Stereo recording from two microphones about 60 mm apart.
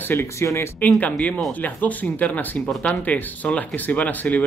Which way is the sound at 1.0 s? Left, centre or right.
Left.